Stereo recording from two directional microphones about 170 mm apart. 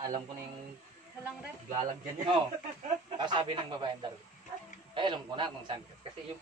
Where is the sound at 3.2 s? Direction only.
25° right (ahead or behind).